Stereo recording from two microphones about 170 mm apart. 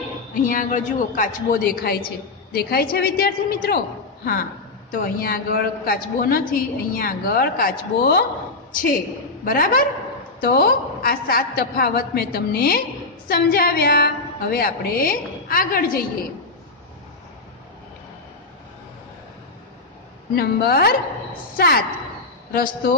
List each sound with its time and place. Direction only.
0.4 s a woman's voice: 50° left (ahead or behind)
4.9 s a woman's voice: 60° left (ahead or behind)
9.4 s a woman's voice: 60° left (ahead or behind)
20.3 s a woman's voice: 65° left (ahead or behind)